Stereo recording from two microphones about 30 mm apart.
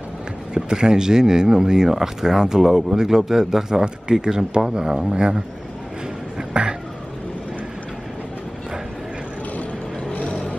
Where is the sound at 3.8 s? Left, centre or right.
Right.